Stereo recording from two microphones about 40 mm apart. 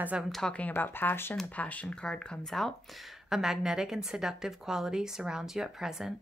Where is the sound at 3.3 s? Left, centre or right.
Centre.